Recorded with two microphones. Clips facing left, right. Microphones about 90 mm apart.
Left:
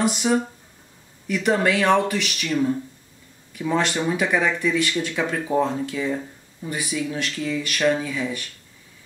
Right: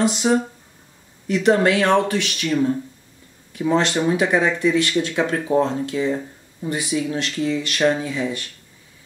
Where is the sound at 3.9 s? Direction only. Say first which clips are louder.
Right 3 dB; 20° right (ahead or behind).